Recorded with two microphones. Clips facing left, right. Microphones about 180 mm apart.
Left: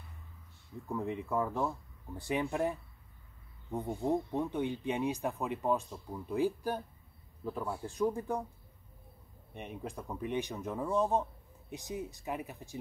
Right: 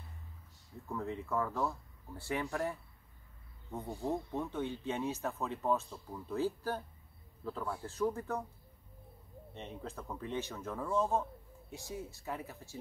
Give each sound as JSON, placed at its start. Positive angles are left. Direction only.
{"t": 0.8, "sound": "speech", "side_deg": 15}
{"t": 9.5, "sound": "speech", "side_deg": 15}